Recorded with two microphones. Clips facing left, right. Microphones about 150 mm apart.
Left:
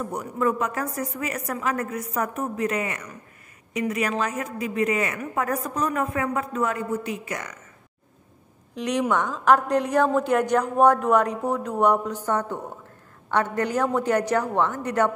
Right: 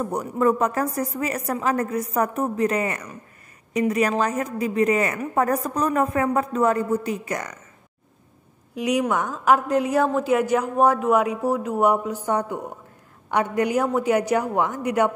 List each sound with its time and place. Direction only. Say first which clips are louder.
0.0 s a woman's voice: right 4 dB; 35° right (ahead or behind)
8.7 s a woman's voice: right 1 dB; 10° right (ahead or behind)